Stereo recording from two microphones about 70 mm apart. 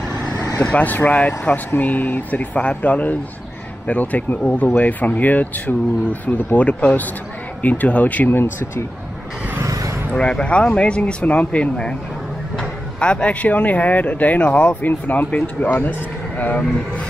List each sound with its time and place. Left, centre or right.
0.6 s speech: centre
8.4 s speech: left
9.6 s vehicle: right
10.1 s speech: centre